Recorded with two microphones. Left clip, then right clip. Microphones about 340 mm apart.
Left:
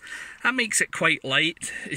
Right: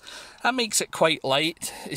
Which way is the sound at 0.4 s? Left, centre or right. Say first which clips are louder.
Left 1 dB; centre.